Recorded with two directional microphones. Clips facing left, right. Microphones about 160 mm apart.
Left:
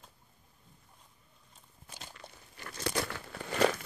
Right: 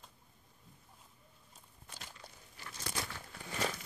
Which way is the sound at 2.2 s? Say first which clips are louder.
Left 4 dB; 65° left (ahead or behind).